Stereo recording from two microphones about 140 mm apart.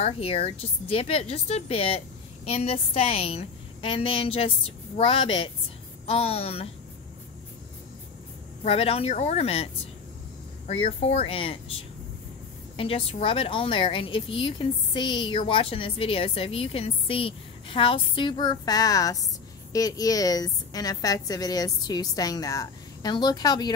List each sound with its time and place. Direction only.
0.0 s a woman's voice: 45° left (ahead or behind)
8.6 s a woman's voice: 45° left (ahead or behind)
11.0 s a woman's voice: 45° left (ahead or behind)
12.7 s a woman's voice: 40° left (ahead or behind)